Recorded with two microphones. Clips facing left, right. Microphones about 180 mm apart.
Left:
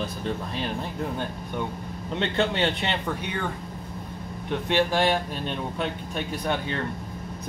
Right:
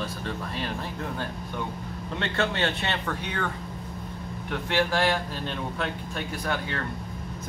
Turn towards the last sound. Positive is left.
turn(degrees=20)  # may be behind; listen again after turning